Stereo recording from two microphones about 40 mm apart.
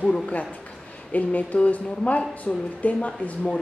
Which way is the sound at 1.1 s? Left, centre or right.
Left.